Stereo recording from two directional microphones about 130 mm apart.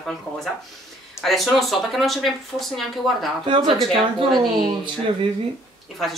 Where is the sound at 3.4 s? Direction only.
40° right (ahead or behind).